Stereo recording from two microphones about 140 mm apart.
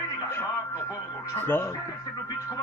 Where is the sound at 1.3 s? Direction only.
15° left (ahead or behind).